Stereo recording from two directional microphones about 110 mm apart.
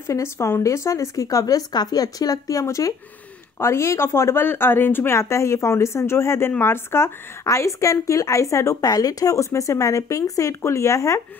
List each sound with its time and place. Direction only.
0.0 s a woman's voice: 25° left (ahead or behind)